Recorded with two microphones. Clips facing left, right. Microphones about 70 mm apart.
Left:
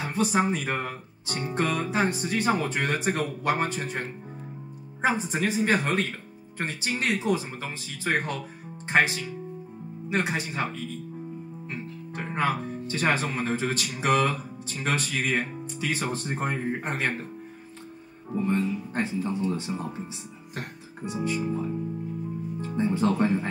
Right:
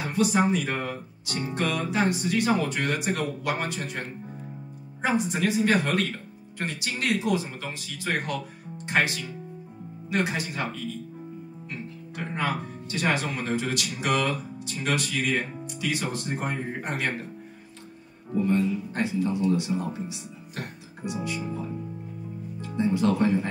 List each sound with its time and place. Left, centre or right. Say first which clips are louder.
0.2 s speech: right 2 dB; left
5.3 s speech: right 1 dB; left
12.4 s speech: left 3 dB; left
18.4 s speech: right 2 dB; left
21.0 s music: left 2 dB; left
22.6 s speech: right 1 dB; left